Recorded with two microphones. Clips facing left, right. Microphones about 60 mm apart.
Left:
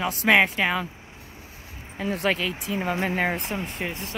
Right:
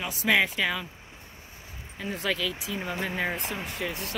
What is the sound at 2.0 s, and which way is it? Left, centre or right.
Speech, left.